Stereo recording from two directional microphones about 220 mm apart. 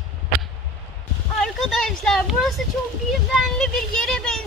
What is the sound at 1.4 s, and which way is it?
Speech, centre (ahead or behind).